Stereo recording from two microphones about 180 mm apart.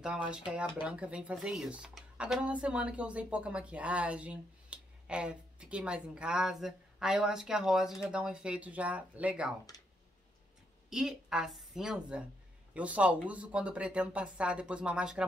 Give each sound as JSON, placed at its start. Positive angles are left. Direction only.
{"t": 0.0, "sound": "speech", "side_deg": -5}
{"t": 10.9, "sound": "speech", "side_deg": -5}